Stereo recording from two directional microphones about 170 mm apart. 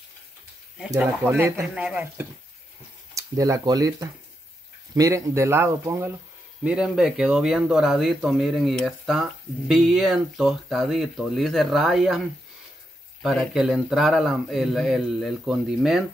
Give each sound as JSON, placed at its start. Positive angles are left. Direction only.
{"t": 0.7, "sound": "speech", "side_deg": 0}
{"t": 1.2, "sound": "speech", "side_deg": -15}
{"t": 3.2, "sound": "speech", "side_deg": -20}
{"t": 13.2, "sound": "speech", "side_deg": 0}